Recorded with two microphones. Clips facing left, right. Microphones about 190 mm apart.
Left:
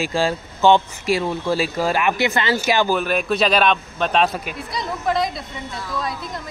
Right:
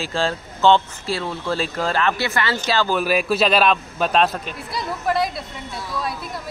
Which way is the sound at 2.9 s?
5° right (ahead or behind).